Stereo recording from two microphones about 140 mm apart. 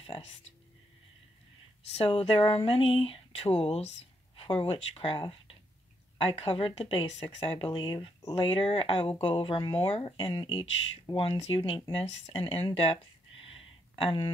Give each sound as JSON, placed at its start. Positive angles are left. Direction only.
{"t": 0.0, "sound": "speech", "side_deg": 40}
{"t": 2.0, "sound": "a woman's voice", "side_deg": 40}